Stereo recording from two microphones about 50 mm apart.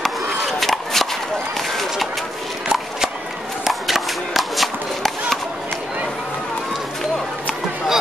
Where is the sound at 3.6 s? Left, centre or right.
Centre.